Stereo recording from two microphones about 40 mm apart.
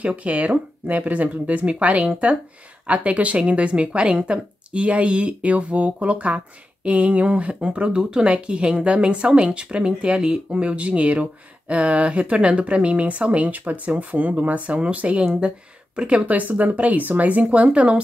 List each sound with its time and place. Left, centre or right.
0.0 s speech: right
8.0 s speech: centre
16.3 s speech: right